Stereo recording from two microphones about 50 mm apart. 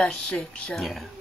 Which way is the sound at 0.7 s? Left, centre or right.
Centre.